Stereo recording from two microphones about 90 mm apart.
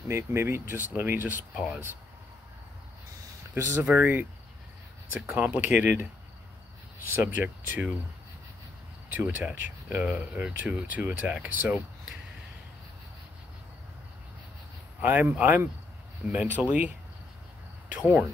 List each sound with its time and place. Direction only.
0.1 s speech: 30° right (ahead or behind)
3.5 s speech: 25° right (ahead or behind)
7.1 s speech: 20° right (ahead or behind)
9.1 s speech: 20° right (ahead or behind)
15.0 s speech: 20° right (ahead or behind)